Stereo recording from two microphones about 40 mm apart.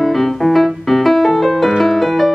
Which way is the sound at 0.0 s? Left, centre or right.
Centre.